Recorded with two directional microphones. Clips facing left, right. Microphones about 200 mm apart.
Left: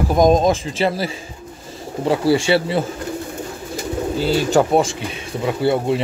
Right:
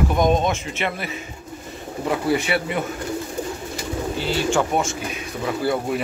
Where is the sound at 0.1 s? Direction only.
40° left (ahead or behind).